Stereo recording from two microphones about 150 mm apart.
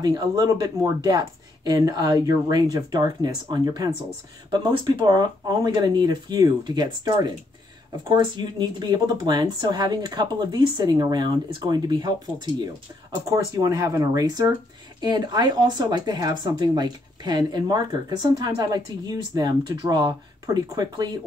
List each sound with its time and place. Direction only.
0.0 s speech: 25° right (ahead or behind)